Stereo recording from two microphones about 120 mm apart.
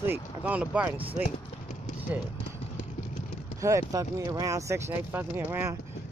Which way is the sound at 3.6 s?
30° right (ahead or behind).